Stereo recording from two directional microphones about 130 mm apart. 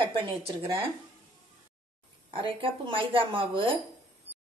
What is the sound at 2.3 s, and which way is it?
A woman's voice, 40° right (ahead or behind).